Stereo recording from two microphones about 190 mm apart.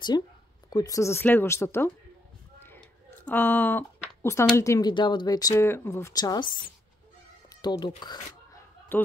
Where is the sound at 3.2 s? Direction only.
10° left (ahead or behind).